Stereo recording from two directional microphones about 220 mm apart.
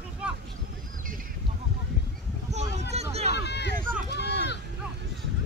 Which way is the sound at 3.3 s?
50° left (ahead or behind).